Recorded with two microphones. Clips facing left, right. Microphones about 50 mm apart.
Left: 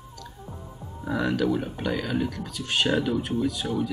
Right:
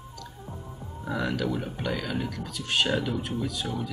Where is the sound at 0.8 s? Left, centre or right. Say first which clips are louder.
Left 3 dB; centre.